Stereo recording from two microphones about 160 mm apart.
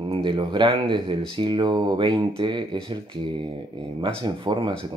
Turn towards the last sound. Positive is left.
turn(degrees=-30)  # may be behind; listen again after turning